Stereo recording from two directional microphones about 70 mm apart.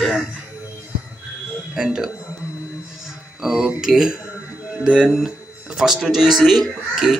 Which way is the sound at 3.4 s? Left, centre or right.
Centre.